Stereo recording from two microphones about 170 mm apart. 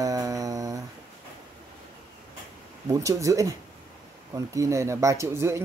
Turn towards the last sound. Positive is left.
turn(degrees=-15)  # may be behind; listen again after turning